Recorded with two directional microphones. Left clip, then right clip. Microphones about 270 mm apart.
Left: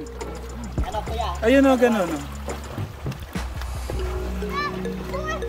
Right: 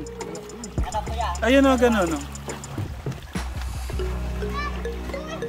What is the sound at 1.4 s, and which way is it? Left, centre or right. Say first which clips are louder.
Speech: left 1 dB; centre.